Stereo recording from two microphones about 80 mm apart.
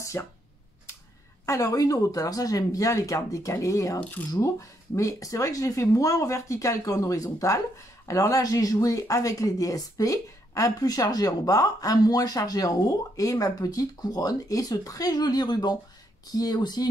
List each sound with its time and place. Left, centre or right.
0.2 s speech: left
1.4 s speech: left
4.0 s speech: left
4.4 s speech: left